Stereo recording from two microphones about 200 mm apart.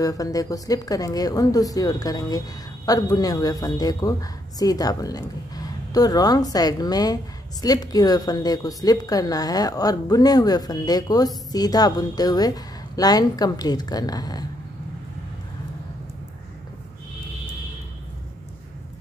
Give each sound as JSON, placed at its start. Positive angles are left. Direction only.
{"t": 0.0, "sound": "speech", "side_deg": 15}